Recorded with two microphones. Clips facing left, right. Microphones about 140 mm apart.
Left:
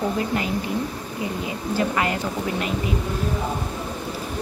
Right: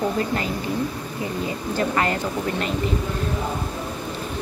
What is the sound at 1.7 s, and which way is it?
Speech, 10° left (ahead or behind).